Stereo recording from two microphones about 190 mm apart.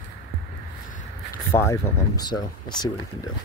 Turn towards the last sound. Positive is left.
turn(degrees=20)  # may be behind; listen again after turning